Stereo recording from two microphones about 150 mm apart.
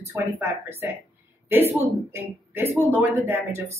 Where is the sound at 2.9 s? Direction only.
15° right (ahead or behind).